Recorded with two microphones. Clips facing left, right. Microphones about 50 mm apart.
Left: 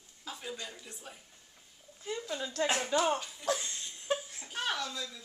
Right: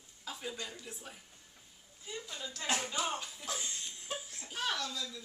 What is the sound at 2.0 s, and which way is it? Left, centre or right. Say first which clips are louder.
Speech: left 7 dB; left.